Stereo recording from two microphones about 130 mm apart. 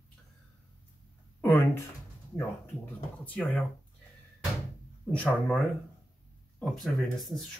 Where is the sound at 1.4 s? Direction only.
15° left (ahead or behind).